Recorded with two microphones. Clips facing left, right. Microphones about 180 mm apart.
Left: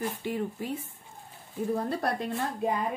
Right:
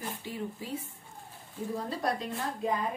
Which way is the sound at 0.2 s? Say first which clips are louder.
Left 6 dB; 60° left (ahead or behind).